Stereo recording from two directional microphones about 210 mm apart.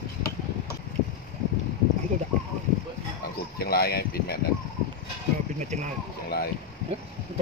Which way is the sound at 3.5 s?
50° left (ahead or behind).